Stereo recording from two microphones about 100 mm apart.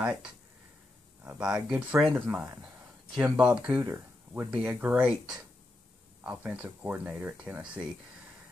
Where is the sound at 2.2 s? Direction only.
20° right (ahead or behind).